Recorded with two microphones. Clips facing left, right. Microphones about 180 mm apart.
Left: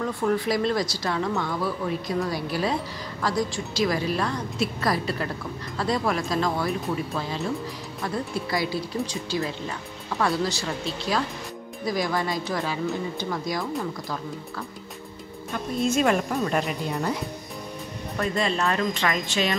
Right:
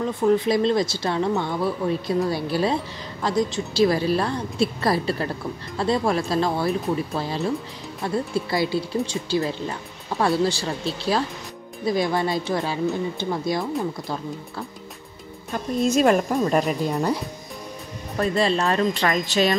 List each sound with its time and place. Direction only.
0.0 s speech: 20° right (ahead or behind)
8.0 s speech: 25° right (ahead or behind)
15.9 s speech: 40° right (ahead or behind)
18.1 s speech: 35° right (ahead or behind)